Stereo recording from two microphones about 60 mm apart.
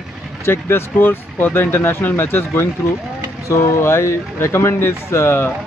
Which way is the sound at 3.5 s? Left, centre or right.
Left.